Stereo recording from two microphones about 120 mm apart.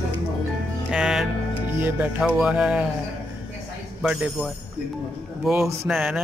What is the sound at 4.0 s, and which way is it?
Speech, 10° right (ahead or behind).